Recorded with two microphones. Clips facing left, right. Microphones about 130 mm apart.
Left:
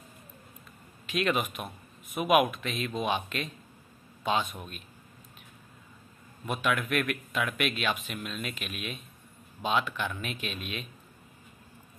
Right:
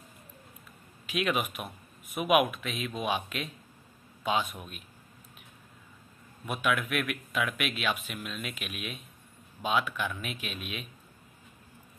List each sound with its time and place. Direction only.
1.0 s a man's voice: 10° right (ahead or behind)
6.4 s speech: 5° right (ahead or behind)